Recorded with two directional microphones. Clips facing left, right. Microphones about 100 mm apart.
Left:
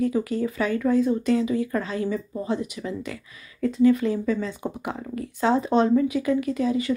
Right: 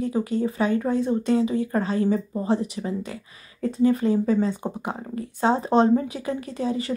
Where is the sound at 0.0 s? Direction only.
30° right (ahead or behind).